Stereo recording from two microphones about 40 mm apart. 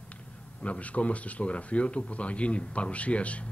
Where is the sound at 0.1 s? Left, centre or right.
Left.